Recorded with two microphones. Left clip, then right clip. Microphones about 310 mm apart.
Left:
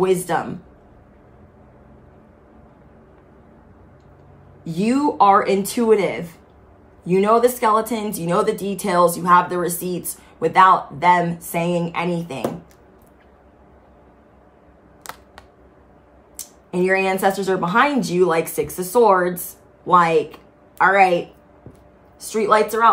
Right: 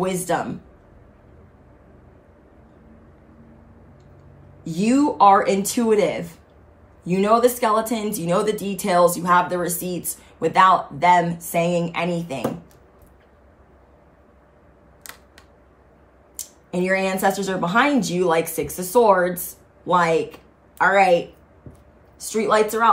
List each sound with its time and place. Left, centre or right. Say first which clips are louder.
0.0 s a woman's voice: left 4 dB; centre
4.6 s a woman's voice: even; centre
15.0 s computer keyboard: left 5 dB; centre
16.3 s a woman's voice: left 3 dB; centre